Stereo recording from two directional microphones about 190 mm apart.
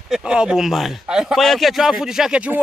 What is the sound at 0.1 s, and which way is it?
A man's voice, 5° right (ahead or behind).